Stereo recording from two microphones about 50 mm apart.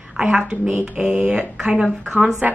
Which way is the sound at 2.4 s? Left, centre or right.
Right.